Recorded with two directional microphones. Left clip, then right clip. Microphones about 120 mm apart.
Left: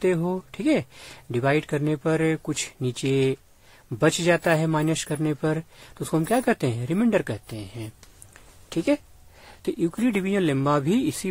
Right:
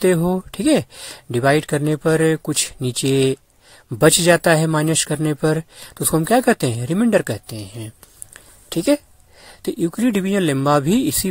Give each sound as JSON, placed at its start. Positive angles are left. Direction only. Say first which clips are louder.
{"t": 0.0, "sound": "speech", "louder": "right 7 dB", "side_deg": -55}